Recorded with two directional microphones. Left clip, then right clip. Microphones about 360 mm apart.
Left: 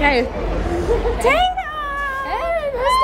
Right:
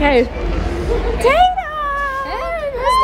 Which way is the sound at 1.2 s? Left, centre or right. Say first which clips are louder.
Right 6 dB; centre.